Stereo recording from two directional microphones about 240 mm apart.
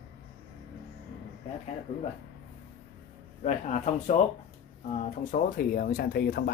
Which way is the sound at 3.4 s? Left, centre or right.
Left.